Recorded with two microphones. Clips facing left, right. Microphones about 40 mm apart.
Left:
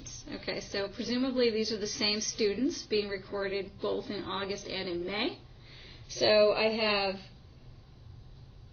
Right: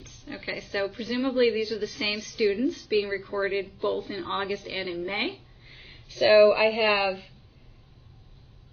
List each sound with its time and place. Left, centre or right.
0.0 s a woman's voice: right
5.0 s a sound: right
6.3 s a woman's voice: centre
6.6 s a woman's voice: right